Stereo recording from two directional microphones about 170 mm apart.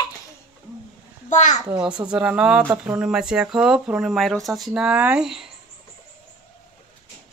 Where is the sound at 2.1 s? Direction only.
5° right (ahead or behind).